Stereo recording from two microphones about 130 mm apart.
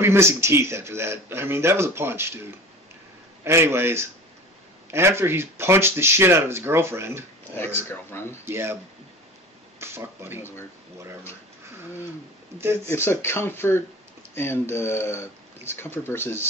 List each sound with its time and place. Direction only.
0.0 s a man's voice: 20° right (ahead or behind)
3.4 s a man's voice: 20° right (ahead or behind)
8.1 s speech: 15° left (ahead or behind)
8.5 s a man's voice: 20° right (ahead or behind)
9.8 s speech: 15° right (ahead or behind)
12.8 s speech: 20° left (ahead or behind)